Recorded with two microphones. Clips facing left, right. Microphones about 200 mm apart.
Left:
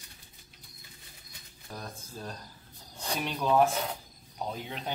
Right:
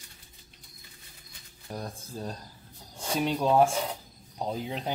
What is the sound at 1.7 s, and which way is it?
Speech, 25° right (ahead or behind).